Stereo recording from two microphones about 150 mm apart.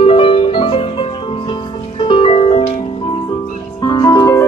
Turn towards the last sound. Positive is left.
turn(degrees=20)  # may be behind; listen again after turning